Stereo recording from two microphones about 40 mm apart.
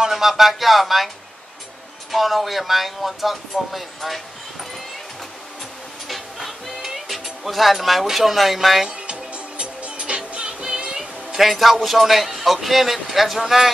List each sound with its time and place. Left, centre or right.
0.1 s a man's voice: centre
2.1 s a man's voice: centre
6.0 s music: centre
8.8 s music: right
11.0 s a man's voice: centre